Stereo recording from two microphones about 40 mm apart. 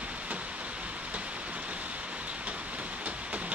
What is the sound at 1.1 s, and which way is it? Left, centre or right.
Rain, right.